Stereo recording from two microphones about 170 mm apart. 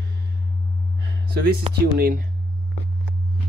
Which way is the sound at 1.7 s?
40° right (ahead or behind).